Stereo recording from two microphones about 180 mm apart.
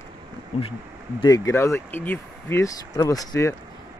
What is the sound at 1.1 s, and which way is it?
Speech, 20° left (ahead or behind).